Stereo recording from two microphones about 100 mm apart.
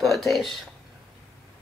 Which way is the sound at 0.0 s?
Centre (ahead or behind).